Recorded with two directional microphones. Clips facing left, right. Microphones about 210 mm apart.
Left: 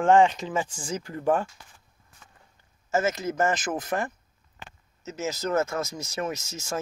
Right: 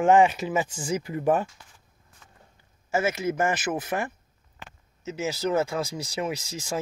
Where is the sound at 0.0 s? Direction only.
10° right (ahead or behind).